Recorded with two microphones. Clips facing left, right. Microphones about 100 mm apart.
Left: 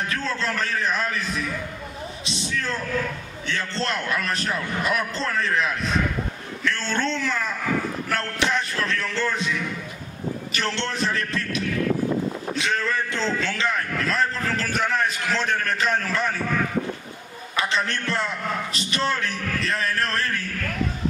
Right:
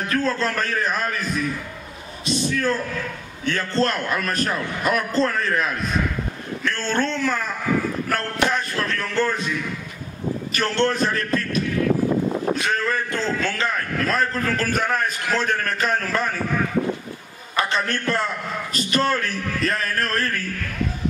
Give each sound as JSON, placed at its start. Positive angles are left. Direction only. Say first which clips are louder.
{"t": 0.1, "sound": "a man's voice", "louder": "right 5 dB", "side_deg": -45}
{"t": 2.2, "sound": "a man's voice", "louder": "right 8 dB", "side_deg": -45}
{"t": 10.5, "sound": "a man's voice", "louder": "right 8 dB", "side_deg": -45}
{"t": 17.6, "sound": "a man's voice", "louder": "right 2 dB", "side_deg": -50}